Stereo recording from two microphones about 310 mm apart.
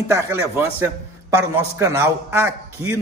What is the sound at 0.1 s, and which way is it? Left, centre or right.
A man's voice, centre.